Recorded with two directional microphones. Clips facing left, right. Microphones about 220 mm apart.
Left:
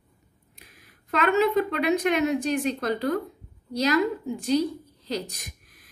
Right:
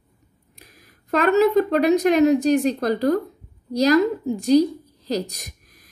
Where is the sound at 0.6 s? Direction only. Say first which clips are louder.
Right 4 dB; 40° right (ahead or behind).